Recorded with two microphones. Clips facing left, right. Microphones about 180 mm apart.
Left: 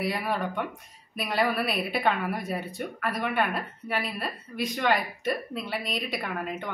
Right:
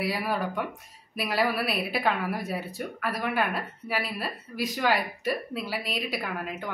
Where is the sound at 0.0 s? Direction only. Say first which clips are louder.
Even; centre (ahead or behind).